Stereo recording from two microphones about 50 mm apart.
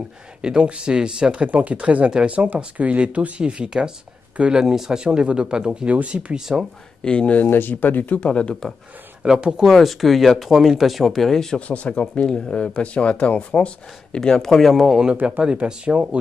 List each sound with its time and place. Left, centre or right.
0.4 s speech: right
1.4 s speech: right
6.4 s speech: centre
7.1 s speech: left
7.4 s speech: left
8.2 s speech: left
9.2 s speech: centre
9.7 s speech: centre
11.3 s speech: centre
11.6 s speech: left; by 15.0 s centre
15.5 s speech: right